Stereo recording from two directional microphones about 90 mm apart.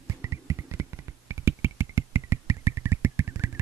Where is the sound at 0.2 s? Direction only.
35° right (ahead or behind).